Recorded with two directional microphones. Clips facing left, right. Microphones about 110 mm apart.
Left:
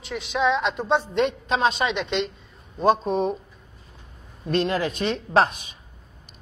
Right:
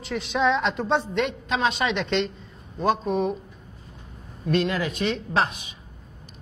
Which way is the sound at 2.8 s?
25° left (ahead or behind).